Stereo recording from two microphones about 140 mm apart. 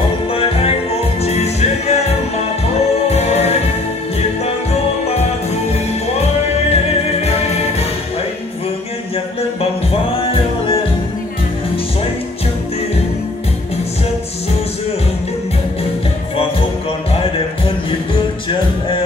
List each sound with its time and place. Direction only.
0.3 s music: 45° left (ahead or behind)
5.7 s music: 50° left (ahead or behind)
10.2 s music: 40° left (ahead or behind)